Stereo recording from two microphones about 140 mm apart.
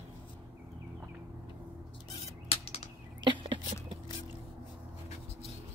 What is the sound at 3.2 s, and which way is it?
Whispering, 35° right (ahead or behind).